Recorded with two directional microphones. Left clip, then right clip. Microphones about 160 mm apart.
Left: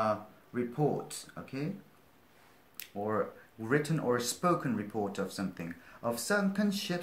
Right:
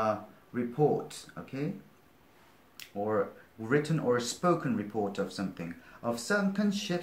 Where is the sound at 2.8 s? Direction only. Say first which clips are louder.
Right 3 dB; 20° left (ahead or behind).